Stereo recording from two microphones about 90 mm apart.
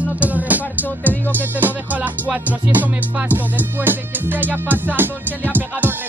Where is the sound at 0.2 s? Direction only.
15° right (ahead or behind).